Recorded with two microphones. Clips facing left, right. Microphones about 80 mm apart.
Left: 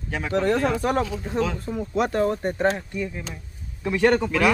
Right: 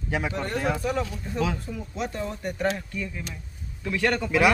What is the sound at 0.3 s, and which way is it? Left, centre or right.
Speech, left.